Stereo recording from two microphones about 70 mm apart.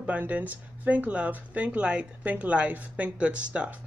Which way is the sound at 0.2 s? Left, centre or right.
Right.